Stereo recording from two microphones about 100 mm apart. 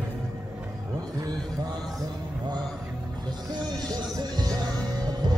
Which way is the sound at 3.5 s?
45° right (ahead or behind).